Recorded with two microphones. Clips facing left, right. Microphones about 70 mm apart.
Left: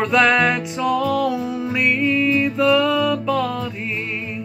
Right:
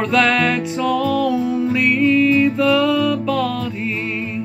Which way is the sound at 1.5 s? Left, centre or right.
Centre.